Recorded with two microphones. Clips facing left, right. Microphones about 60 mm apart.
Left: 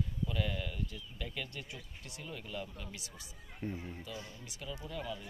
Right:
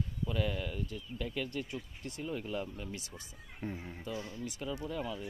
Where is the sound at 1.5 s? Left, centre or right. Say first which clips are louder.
Right 7 dB; right.